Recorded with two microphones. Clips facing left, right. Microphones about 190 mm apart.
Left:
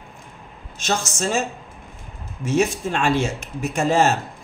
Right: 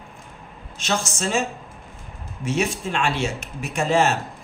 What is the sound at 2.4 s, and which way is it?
A man's voice, 45° left (ahead or behind).